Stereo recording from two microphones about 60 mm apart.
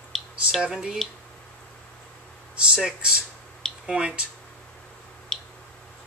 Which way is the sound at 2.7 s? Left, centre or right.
Centre.